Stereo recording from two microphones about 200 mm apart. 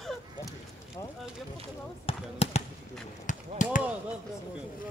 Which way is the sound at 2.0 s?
30° left (ahead or behind).